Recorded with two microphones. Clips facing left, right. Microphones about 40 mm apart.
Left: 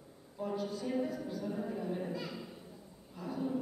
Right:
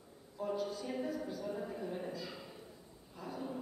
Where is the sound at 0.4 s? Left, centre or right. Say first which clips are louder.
Left 1 dB; centre.